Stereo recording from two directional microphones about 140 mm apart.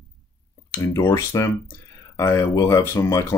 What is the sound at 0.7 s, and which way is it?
Speech, 20° left (ahead or behind).